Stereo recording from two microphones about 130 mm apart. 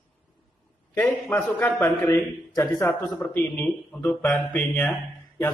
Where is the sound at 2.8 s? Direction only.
5° left (ahead or behind).